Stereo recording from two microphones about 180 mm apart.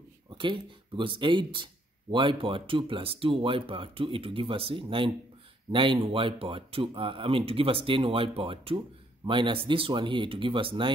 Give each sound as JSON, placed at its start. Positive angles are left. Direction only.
{"t": 0.4, "sound": "speech", "side_deg": -25}